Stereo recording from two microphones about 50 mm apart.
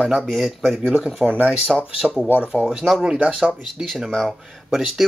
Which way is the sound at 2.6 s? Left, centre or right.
Centre.